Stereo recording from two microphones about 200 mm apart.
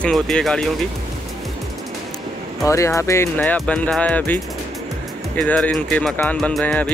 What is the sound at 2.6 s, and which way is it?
Speech, 15° left (ahead or behind).